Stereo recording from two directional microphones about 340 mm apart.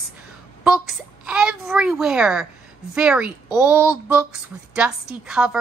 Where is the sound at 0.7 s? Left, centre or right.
Centre.